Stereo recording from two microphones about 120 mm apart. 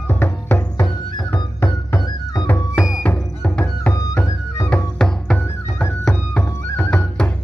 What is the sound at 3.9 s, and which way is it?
Music, 25° left (ahead or behind).